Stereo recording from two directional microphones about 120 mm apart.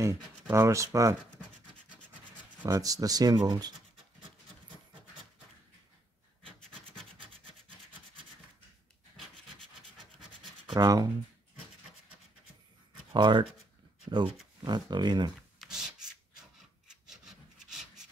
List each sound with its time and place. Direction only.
0.0 s speech: 20° right (ahead or behind)
2.6 s speech: 30° right (ahead or behind)
10.7 s speech: 30° right (ahead or behind)
13.1 s speech: 40° right (ahead or behind)
14.6 s speech: 35° right (ahead or behind)
15.3 s a sound: centre (ahead or behind)